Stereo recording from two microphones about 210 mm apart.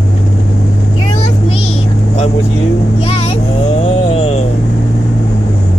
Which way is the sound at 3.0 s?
25° left (ahead or behind).